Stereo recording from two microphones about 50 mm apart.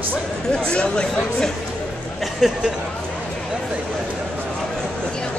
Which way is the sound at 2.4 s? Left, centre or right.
Centre.